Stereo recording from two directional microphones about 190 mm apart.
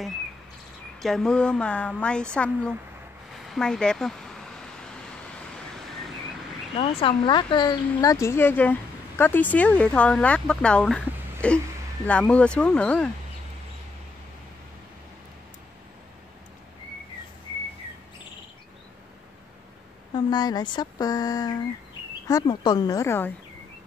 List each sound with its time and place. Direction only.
1.0 s speech: centre (ahead or behind)
6.8 s speech: 30° left (ahead or behind); by 13.1 s 5° left (ahead or behind)
20.2 s speech: 20° left (ahead or behind)